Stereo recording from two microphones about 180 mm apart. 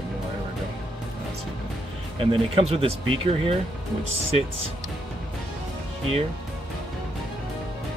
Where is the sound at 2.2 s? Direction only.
30° right (ahead or behind).